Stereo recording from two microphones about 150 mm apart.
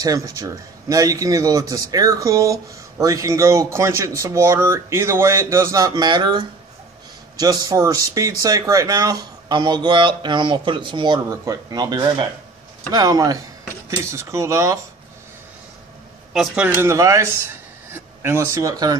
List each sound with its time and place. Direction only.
0.0 s speech: 20° right (ahead or behind)
16.3 s speech: 10° right (ahead or behind)